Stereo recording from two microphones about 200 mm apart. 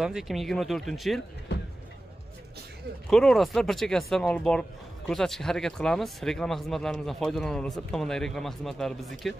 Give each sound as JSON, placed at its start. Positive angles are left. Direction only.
{"t": 0.0, "sound": "speech", "side_deg": 0}
{"t": 1.5, "sound": "a sound", "side_deg": 55}
{"t": 3.1, "sound": "speech", "side_deg": 0}